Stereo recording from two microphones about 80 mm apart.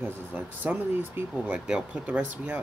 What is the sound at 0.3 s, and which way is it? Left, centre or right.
Speech, right.